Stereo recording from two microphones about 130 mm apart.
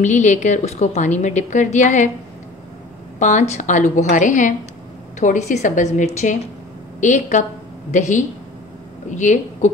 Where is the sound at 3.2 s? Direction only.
70° left (ahead or behind).